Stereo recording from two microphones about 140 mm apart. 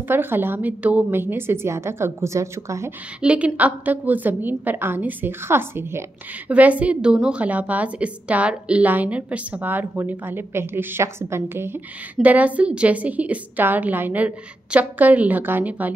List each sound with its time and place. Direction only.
0.1 s a woman's voice: 15° right (ahead or behind)
3.2 s a woman's voice: 10° right (ahead or behind)